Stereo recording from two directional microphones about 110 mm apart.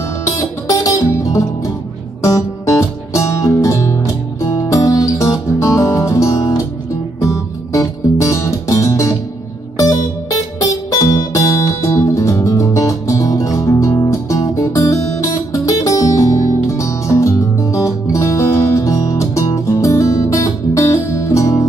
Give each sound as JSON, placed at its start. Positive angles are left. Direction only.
{"t": 0.7, "sound": "music", "side_deg": 30}